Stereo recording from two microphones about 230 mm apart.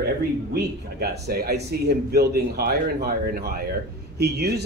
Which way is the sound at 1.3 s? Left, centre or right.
Right.